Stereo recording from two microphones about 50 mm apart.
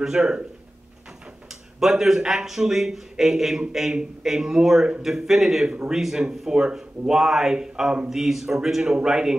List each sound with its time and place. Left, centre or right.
0.0 s speech: centre
1.5 s speech: centre
3.9 s speech: centre